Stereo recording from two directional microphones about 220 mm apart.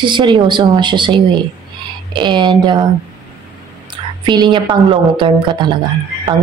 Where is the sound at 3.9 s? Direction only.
20° right (ahead or behind).